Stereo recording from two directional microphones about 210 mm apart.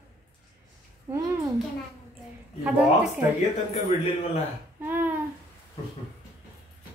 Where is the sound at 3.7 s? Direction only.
30° left (ahead or behind).